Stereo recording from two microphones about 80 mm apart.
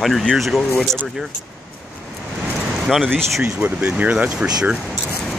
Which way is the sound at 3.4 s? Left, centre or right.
Centre.